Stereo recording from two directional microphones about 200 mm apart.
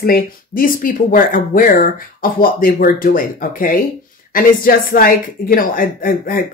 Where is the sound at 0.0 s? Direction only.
45° left (ahead or behind).